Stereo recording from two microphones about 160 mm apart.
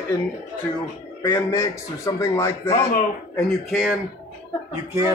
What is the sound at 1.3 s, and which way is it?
A man's voice, 20° left (ahead or behind).